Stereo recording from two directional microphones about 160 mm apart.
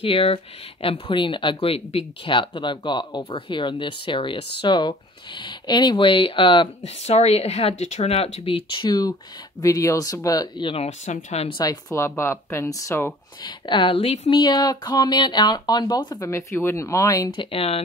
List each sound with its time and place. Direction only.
0.0 s speech: 35° left (ahead or behind)
10.9 s speech: 45° left (ahead or behind)
11.6 s speech: 20° left (ahead or behind)
13.4 s speech: 30° left (ahead or behind)
14.3 s speech: 25° left (ahead or behind)
17.5 s speech: 40° left (ahead or behind)